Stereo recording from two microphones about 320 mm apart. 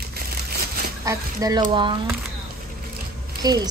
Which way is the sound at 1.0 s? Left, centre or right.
Centre.